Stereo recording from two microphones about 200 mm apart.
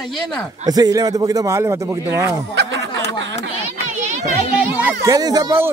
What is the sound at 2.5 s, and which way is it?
Snicker, 65° right (ahead or behind).